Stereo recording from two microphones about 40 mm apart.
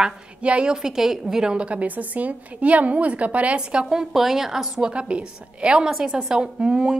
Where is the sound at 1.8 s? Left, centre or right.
Right.